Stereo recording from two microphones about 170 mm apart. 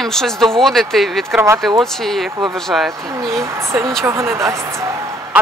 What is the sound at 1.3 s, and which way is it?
Speech, 15° right (ahead or behind).